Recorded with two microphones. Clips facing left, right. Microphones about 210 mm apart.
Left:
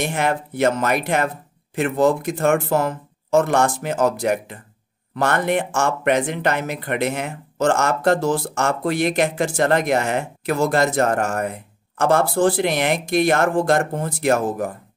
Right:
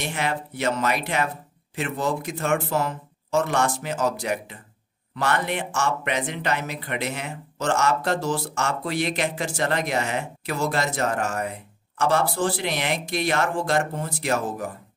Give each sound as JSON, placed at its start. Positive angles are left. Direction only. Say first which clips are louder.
{"t": 0.0, "sound": "speech", "louder": "left 6 dB", "side_deg": 50}